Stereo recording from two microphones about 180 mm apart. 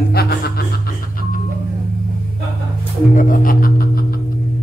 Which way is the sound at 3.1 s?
50° left (ahead or behind).